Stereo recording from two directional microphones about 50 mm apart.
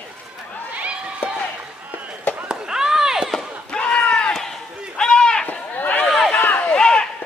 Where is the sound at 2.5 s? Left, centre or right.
Centre.